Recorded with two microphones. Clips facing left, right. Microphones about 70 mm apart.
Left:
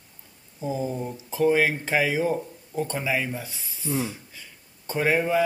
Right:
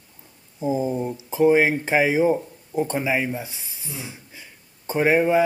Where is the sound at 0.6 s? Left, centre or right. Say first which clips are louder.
Right 5 dB; centre.